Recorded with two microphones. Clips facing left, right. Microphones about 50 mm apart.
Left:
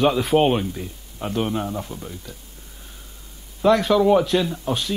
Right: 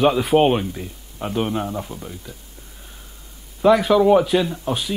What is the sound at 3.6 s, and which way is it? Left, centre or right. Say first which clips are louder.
Speech: right 2 dB; centre.